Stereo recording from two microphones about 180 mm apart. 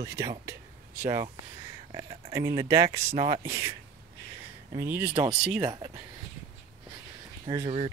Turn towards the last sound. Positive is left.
turn(degrees=-30)  # may be behind; listen again after turning